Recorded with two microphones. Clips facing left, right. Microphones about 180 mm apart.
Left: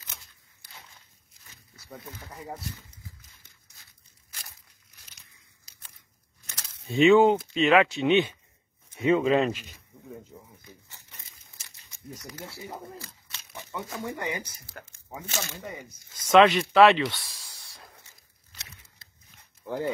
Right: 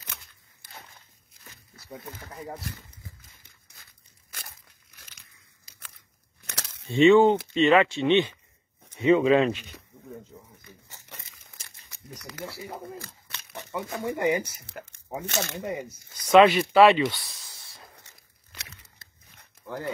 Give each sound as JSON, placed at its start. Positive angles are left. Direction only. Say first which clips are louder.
{"t": 4.3, "sound": "tearing", "louder": "right 4 dB", "side_deg": -55}
{"t": 6.4, "sound": "crumpling", "louder": "right 7 dB", "side_deg": -75}
{"t": 6.9, "sound": "speech", "louder": "right 1 dB", "side_deg": 0}
{"t": 11.1, "sound": "crumpling", "louder": "right 6 dB", "side_deg": -70}
{"t": 12.2, "sound": "speech", "louder": "right 6 dB", "side_deg": -70}
{"t": 13.0, "sound": "a sound", "louder": "right 2 dB", "side_deg": -60}
{"t": 14.0, "sound": "speech", "louder": "right 9 dB", "side_deg": -20}
{"t": 15.2, "sound": "speech", "louder": "right 4 dB", "side_deg": -65}
{"t": 15.5, "sound": "speech", "louder": "right 7 dB", "side_deg": -20}
{"t": 16.3, "sound": "speech", "louder": "right 2 dB", "side_deg": -5}
{"t": 18.0, "sound": "a sound", "louder": "right 2 dB", "side_deg": -65}
{"t": 19.6, "sound": "dog", "louder": "left 3 dB", "side_deg": -75}